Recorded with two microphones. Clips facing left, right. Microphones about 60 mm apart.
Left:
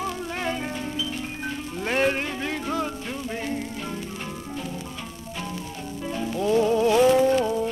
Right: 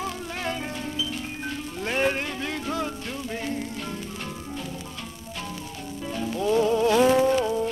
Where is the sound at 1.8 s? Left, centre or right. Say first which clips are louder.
Left 2 dB; centre.